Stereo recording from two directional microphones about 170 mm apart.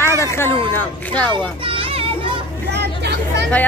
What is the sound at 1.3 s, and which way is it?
Children playing, 30° right (ahead or behind).